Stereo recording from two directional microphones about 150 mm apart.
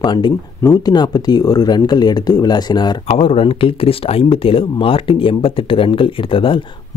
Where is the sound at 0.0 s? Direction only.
30° left (ahead or behind).